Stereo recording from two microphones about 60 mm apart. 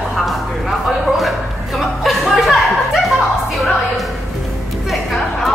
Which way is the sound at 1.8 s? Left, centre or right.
Centre.